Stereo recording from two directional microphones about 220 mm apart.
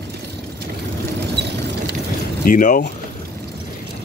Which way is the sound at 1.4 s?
50° right (ahead or behind).